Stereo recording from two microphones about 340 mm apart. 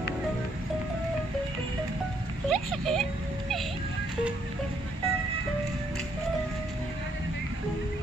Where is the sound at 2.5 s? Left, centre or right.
Centre.